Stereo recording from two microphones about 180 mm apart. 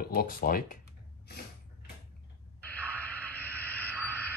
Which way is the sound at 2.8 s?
10° right (ahead or behind).